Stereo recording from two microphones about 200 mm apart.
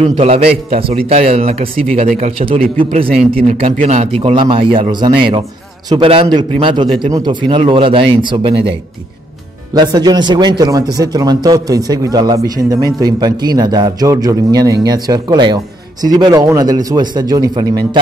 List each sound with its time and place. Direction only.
0.0 s a man's voice: 30° right (ahead or behind)
9.8 s a man's voice: 20° right (ahead or behind)